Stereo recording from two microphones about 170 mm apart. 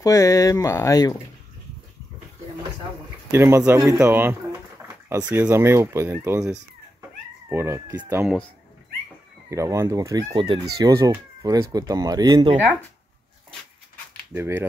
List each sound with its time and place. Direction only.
0.0 s speech: 20° left (ahead or behind)
3.3 s speech: 15° right (ahead or behind)
9.5 s speech: 15° right (ahead or behind)
14.3 s speech: 15° right (ahead or behind)